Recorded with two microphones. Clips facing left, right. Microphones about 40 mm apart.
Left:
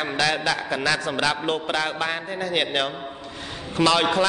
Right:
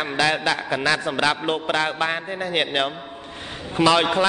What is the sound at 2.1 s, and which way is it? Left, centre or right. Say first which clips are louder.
Speech: right 1 dB; right.